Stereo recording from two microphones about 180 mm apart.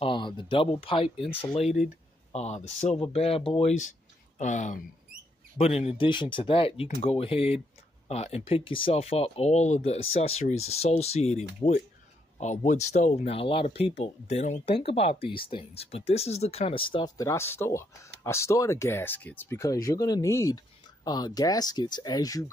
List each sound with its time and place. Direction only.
0.0 s speech: 25° left (ahead or behind)
4.4 s speech: 40° left (ahead or behind); by 22.5 s 20° left (ahead or behind)